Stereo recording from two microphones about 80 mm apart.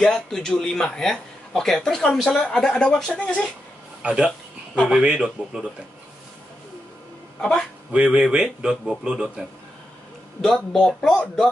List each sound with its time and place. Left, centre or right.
0.0 s a man's voice: centre
4.0 s speech: centre
7.9 s speech: centre
10.4 s a man's voice: centre